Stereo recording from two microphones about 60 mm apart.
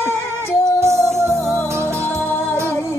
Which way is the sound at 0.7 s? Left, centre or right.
Right.